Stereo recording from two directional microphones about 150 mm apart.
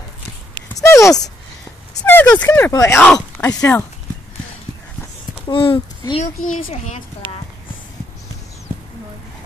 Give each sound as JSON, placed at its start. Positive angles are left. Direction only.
{"t": 0.7, "sound": "a sound", "side_deg": 20}
{"t": 2.0, "sound": "speech", "side_deg": 10}
{"t": 5.5, "sound": "speech", "side_deg": 35}
{"t": 6.4, "sound": "speech", "side_deg": 55}